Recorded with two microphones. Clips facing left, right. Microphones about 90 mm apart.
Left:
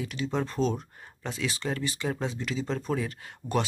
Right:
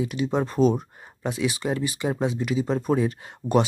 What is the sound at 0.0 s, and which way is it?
Speech, 20° right (ahead or behind).